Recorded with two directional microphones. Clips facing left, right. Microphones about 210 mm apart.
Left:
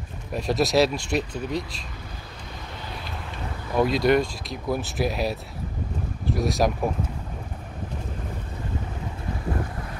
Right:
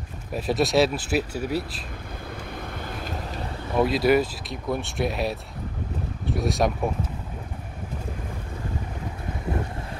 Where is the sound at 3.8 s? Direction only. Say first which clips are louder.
Even; centre (ahead or behind).